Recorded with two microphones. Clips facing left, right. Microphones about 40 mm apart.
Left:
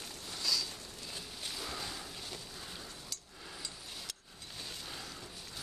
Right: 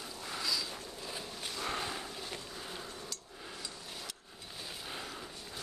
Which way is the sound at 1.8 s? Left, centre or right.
Right.